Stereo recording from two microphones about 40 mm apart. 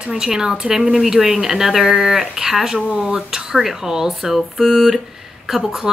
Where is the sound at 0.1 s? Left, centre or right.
Centre.